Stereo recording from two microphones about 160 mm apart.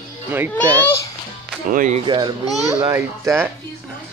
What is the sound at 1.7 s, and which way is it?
Speech, 55° right (ahead or behind).